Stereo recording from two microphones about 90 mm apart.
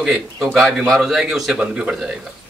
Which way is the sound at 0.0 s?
Centre (ahead or behind).